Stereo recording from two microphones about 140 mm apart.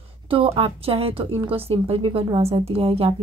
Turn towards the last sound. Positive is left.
turn(degrees=-45)  # may be behind; listen again after turning